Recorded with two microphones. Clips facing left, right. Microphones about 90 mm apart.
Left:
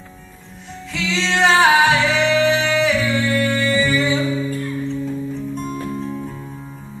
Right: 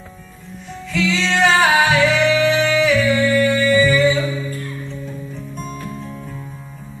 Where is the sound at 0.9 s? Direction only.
25° left (ahead or behind).